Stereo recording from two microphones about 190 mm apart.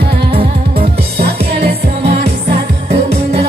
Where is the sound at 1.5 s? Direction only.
55° right (ahead or behind).